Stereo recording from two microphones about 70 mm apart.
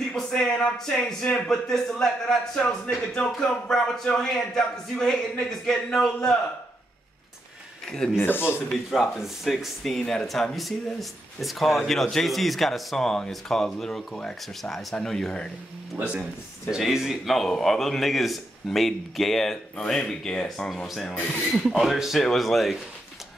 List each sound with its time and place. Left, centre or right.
0.1 s a man's voice: centre
8.2 s speech: left
8.9 s a man's voice: centre
16.0 s speech: centre
16.7 s a man's voice: centre
21.6 s speech: centre